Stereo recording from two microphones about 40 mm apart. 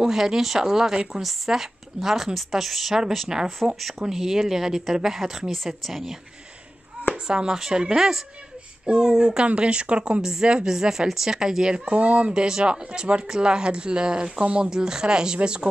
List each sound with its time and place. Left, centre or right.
0.0 s speech: centre
3.6 s speech: centre
4.1 s speech: centre
7.2 s speech: centre
9.4 s speech: right
12.0 s speech: right
12.3 s speech: centre
14.7 s speech: centre